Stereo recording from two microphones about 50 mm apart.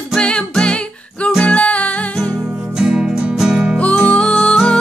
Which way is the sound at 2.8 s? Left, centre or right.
Centre.